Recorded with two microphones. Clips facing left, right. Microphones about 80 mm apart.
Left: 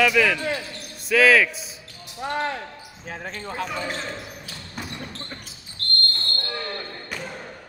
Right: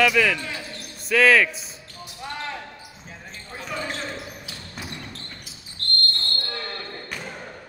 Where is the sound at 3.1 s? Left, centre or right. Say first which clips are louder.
Left 9 dB; left.